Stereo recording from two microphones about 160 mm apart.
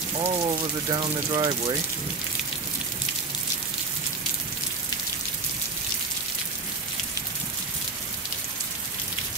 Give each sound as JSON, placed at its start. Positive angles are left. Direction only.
{"t": 0.2, "sound": "speech", "side_deg": -30}